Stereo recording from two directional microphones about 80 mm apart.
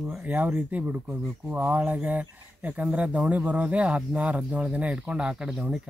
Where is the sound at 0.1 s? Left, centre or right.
Centre.